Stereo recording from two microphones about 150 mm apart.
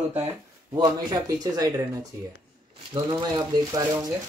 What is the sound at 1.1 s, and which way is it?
Speech, 25° right (ahead or behind).